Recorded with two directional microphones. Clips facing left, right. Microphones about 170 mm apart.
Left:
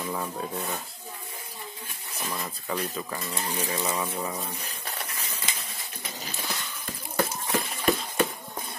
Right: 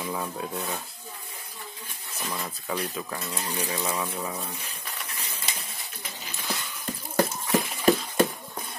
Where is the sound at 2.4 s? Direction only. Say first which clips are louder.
Even; centre (ahead or behind).